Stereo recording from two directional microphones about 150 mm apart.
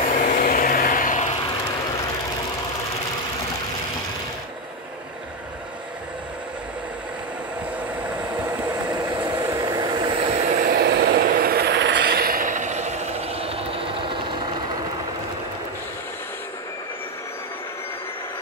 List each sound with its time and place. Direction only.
0.0 s vehicle: 60° left (ahead or behind)
8.6 s vehicle: 25° right (ahead or behind)
9.2 s vehicle: 15° right (ahead or behind); by 10.5 s 40° right (ahead or behind)
10.5 s vehicle: 65° right (ahead or behind); by 14.4 s 35° right (ahead or behind)